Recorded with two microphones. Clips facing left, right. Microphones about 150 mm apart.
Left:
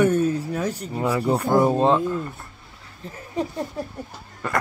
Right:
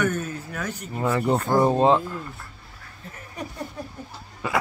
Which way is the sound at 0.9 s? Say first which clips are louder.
Even; 5° left (ahead or behind).